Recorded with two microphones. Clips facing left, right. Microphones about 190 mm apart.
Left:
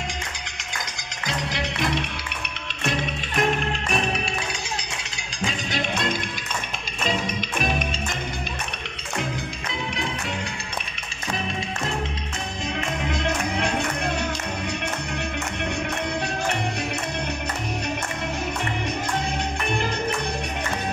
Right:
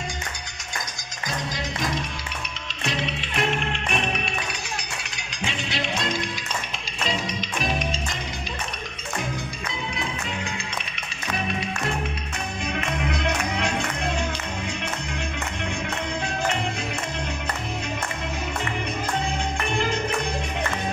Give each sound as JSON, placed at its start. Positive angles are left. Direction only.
{"t": 1.2, "sound": "music", "side_deg": 70}
{"t": 2.8, "sound": "music", "side_deg": 50}
{"t": 5.4, "sound": "music", "side_deg": 45}